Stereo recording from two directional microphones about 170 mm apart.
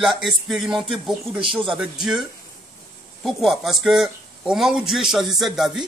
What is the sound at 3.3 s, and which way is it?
Speech, centre (ahead or behind).